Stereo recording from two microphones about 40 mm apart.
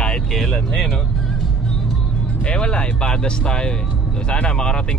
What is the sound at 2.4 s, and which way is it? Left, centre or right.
Speech, left.